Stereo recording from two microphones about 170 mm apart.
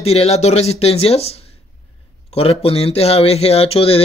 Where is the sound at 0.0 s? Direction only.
35° left (ahead or behind).